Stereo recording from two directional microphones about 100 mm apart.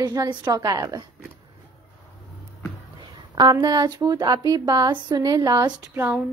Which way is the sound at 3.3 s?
45° right (ahead or behind).